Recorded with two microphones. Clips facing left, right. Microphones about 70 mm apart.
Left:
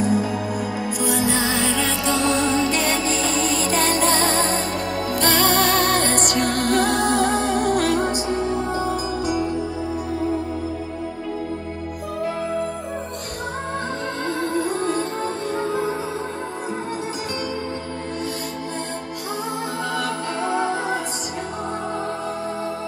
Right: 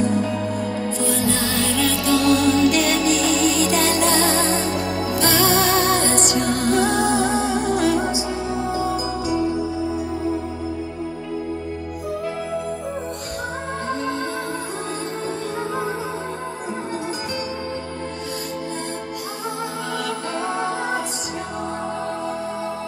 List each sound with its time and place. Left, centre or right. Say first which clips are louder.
0.0 s music: even; centre; by 8.9 s left